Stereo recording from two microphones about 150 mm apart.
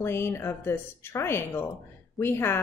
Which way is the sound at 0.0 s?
15° left (ahead or behind).